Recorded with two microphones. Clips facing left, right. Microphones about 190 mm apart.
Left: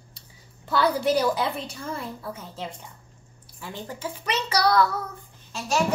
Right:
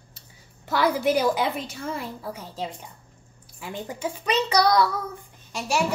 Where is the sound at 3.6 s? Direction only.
15° right (ahead or behind).